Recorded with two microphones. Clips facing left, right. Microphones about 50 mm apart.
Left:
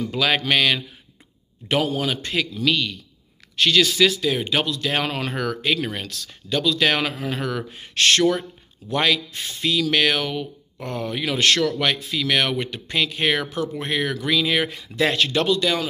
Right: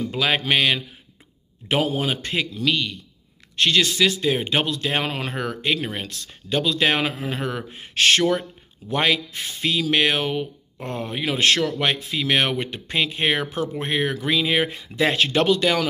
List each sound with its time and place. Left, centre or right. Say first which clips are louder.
0.0 s speech: left 1 dB; centre
2.5 s speech: left 1 dB; centre
4.2 s speech: right 1 dB; right
5.0 s speech: left 1 dB; centre
6.2 s speech: left 1 dB; right; by 7.5 s centre
7.5 s speech: even; centre
9.8 s speech: right 1 dB; centre
10.2 s speech: right 2 dB; right
10.8 s speech: left 1 dB; centre
15.4 s speech: right 2 dB; right